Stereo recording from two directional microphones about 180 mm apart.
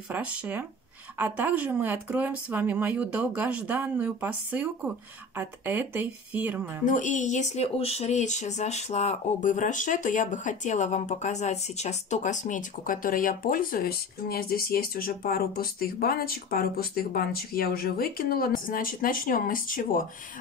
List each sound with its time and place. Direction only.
0.1 s speech: 10° right (ahead or behind)
6.9 s speech: 45° left (ahead or behind)